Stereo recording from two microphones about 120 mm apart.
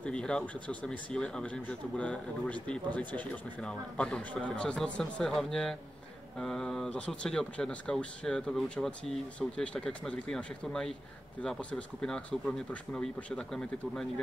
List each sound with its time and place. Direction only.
0.0 s speech: 10° left (ahead or behind)